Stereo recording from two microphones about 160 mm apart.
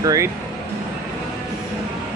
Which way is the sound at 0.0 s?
20° right (ahead or behind).